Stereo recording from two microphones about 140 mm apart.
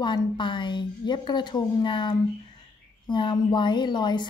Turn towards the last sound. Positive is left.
turn(degrees=30)  # may be behind; listen again after turning